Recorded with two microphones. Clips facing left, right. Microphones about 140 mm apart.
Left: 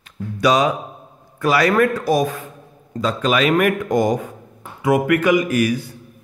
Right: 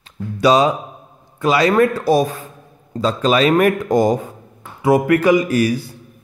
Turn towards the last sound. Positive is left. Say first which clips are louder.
# right 1 dB
turn(degrees=-35)  # may be behind; listen again after turning